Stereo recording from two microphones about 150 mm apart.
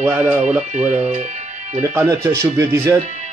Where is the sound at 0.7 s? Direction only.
55° right (ahead or behind).